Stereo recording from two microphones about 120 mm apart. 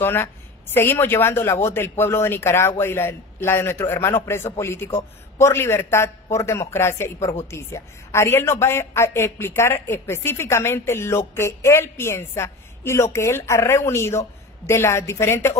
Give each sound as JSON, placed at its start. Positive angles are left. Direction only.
{"t": 0.0, "sound": "a woman's voice", "side_deg": 20}